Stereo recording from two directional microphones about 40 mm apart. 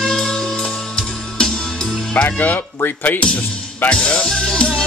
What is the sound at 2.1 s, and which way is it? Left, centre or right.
Speech, left.